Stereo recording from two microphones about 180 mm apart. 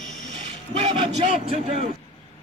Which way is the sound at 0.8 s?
30° right (ahead or behind).